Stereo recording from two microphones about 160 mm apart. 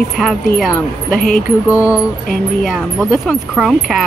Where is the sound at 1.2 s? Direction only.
60° left (ahead or behind).